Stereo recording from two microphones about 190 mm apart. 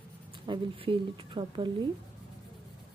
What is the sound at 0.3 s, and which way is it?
Speech, 25° right (ahead or behind).